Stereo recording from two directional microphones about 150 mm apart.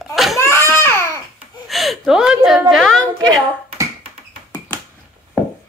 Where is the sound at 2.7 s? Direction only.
5° left (ahead or behind).